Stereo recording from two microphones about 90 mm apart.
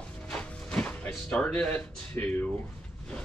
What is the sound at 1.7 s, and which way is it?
Speech, 20° left (ahead or behind).